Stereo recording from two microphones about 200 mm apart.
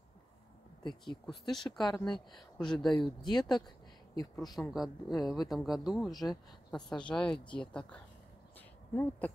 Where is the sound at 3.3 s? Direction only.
20° left (ahead or behind).